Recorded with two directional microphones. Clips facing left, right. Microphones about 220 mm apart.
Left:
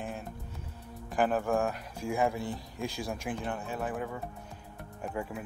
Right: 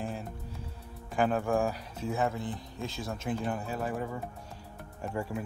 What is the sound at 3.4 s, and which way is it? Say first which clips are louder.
Speech: right 2 dB; 5° right (ahead or behind).